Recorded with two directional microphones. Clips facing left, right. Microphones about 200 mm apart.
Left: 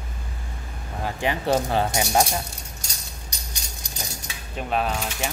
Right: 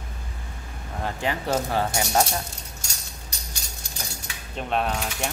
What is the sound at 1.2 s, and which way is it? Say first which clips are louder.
Speech: left 3 dB; 25° left (ahead or behind).